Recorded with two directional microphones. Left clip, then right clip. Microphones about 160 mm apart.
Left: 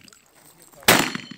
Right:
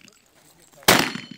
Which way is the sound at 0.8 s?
Centre (ahead or behind).